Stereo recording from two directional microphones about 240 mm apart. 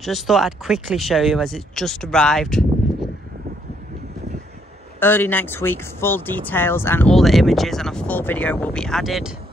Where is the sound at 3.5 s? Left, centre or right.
Right.